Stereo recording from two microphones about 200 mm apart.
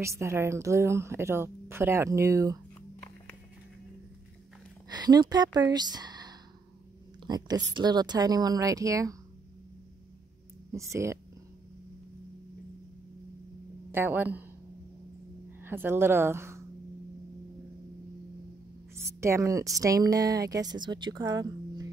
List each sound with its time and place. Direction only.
0.0 s a woman's voice: 15° right (ahead or behind)
4.9 s a woman's voice: 20° right (ahead or behind)
10.7 s a woman's voice: 15° right (ahead or behind)
13.9 s a woman's voice: 10° right (ahead or behind)
15.6 s speech: 10° right (ahead or behind)
19.2 s a woman's voice: 15° right (ahead or behind)